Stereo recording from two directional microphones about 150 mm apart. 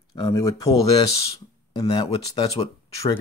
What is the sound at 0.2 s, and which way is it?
Speech, 20° left (ahead or behind).